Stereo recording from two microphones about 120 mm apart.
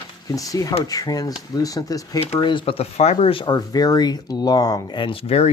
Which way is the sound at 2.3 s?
40° left (ahead or behind).